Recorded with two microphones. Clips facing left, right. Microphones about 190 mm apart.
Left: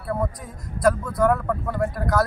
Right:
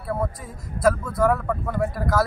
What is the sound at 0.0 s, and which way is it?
Speech, centre (ahead or behind).